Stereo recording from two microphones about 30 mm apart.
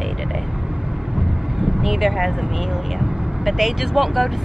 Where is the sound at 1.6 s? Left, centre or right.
Centre.